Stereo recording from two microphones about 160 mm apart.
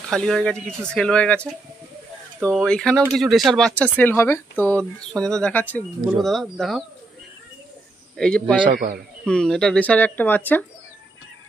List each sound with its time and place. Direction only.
0.1 s speech: 5° left (ahead or behind)
6.2 s speech: centre (ahead or behind)
8.2 s speech: 5° left (ahead or behind)
8.6 s a man's voice: 60° right (ahead or behind)
9.2 s speech: 5° left (ahead or behind)